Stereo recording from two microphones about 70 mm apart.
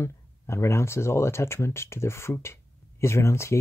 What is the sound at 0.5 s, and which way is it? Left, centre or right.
Speech, left.